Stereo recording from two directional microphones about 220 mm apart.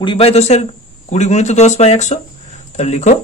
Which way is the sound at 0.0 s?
25° left (ahead or behind).